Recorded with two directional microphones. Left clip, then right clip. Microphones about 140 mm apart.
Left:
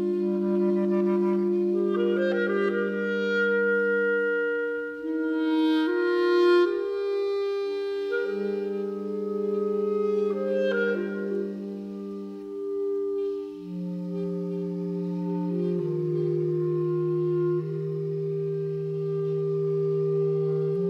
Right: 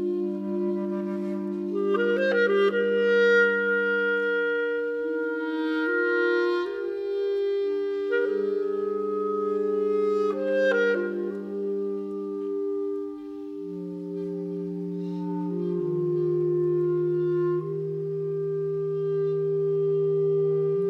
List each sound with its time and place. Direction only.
0.5 s music: 35° left (ahead or behind)
1.9 s clarinet: 35° right (ahead or behind)
5.5 s music: 25° left (ahead or behind)
9.9 s clarinet: 35° right (ahead or behind)
16.8 s music: 20° right (ahead or behind)